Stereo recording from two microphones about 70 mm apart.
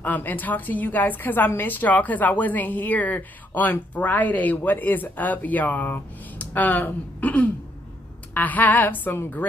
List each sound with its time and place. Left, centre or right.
0.0 s a woman's voice: left